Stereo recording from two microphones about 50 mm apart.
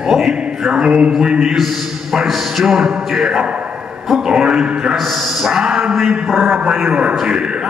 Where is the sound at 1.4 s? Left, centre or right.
Centre.